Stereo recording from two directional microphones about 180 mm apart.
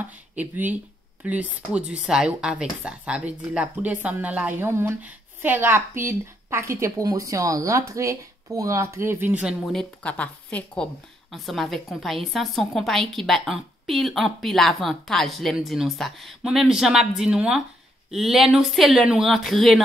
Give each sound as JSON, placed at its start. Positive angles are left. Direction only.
{"t": 0.4, "sound": "speech", "side_deg": -10}
{"t": 9.6, "sound": "a woman's voice", "side_deg": 5}